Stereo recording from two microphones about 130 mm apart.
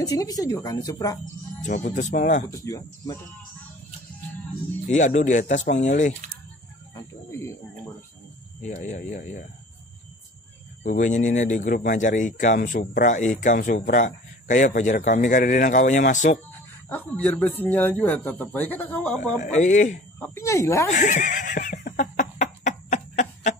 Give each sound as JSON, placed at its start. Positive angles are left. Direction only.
{"t": 0.0, "sound": "speech", "side_deg": 30}
{"t": 1.7, "sound": "speech", "side_deg": 70}
{"t": 2.5, "sound": "speech", "side_deg": 25}
{"t": 4.9, "sound": "speech", "side_deg": 70}
{"t": 7.0, "sound": "cricket", "side_deg": 20}
{"t": 8.6, "sound": "speech", "side_deg": 65}
{"t": 10.8, "sound": "speech", "side_deg": 70}
{"t": 16.9, "sound": "a man's voice", "side_deg": 15}
{"t": 19.3, "sound": "speech", "side_deg": 70}
{"t": 20.2, "sound": "speech", "side_deg": 20}
{"t": 20.9, "sound": "a sound", "side_deg": 70}